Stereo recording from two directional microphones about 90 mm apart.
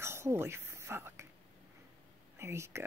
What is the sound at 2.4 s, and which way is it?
Speech, 30° right (ahead or behind).